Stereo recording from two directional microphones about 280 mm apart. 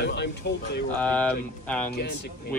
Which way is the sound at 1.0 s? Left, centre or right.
Centre.